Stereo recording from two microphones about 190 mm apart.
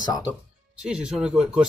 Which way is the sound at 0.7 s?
5° right (ahead or behind).